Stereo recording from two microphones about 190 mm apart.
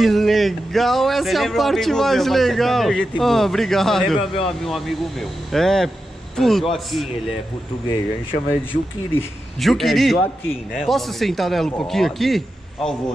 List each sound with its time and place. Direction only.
0.0 s speech: centre (ahead or behind)
9.6 s speech: centre (ahead or behind)